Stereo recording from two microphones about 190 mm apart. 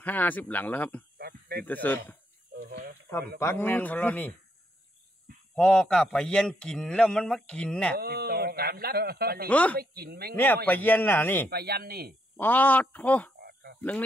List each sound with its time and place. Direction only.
0.0 s speech: 10° left (ahead or behind)
1.1 s a sound: 55° right (ahead or behind)
1.7 s speech: 10° left (ahead or behind)
2.5 s a sound: 55° right (ahead or behind)
3.3 s speech: 10° left (ahead or behind)
5.5 s a man's voice: 5° left (ahead or behind)
8.0 s speech: 55° right (ahead or behind)
9.5 s speech: 10° left (ahead or behind)
9.8 s speech: 55° right (ahead or behind)
10.3 s speech: 10° left (ahead or behind)
11.5 s speech: 55° right (ahead or behind)
12.4 s speech: 10° left (ahead or behind)
13.4 s a sound: 55° right (ahead or behind)